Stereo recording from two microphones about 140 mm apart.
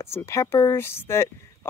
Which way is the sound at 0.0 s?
20° left (ahead or behind).